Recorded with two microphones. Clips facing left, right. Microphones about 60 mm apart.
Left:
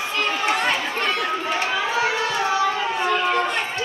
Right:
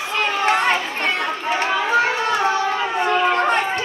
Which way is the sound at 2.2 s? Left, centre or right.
Right.